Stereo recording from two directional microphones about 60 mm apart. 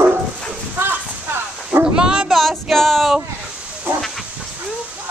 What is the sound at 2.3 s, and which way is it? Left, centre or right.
Female singing, centre.